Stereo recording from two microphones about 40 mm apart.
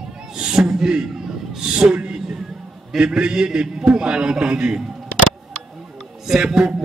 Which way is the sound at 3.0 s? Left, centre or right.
Right.